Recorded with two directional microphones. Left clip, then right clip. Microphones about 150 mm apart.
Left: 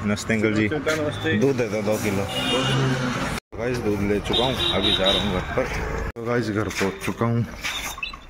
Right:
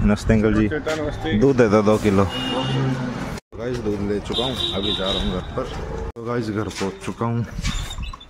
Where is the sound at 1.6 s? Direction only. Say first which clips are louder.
Right 7 dB; 90° right.